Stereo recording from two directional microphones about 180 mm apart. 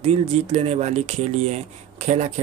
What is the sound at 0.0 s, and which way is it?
Speech, 35° right (ahead or behind).